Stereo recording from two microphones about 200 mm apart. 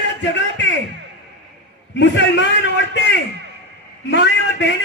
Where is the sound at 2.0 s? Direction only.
65° left (ahead or behind).